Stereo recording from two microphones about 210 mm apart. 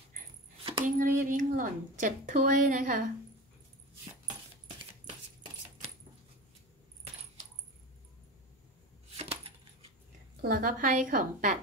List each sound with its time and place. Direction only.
0.8 s speech: 40° right (ahead or behind)
9.1 s coin: 30° right (ahead or behind)
10.4 s a woman's voice: 40° right (ahead or behind)